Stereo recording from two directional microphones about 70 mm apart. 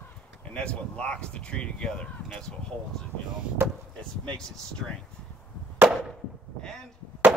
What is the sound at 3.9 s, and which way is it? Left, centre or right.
Speech, centre.